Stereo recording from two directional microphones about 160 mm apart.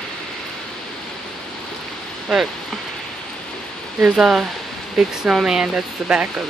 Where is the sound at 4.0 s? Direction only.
5° right (ahead or behind).